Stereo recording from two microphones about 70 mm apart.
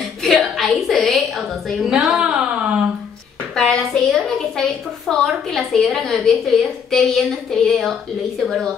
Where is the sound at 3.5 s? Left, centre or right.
Centre.